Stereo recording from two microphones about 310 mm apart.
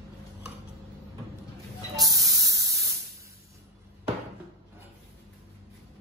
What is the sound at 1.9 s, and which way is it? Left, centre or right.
Spray, centre.